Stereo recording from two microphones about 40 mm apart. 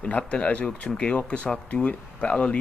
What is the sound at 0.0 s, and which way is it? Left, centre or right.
Speech, left.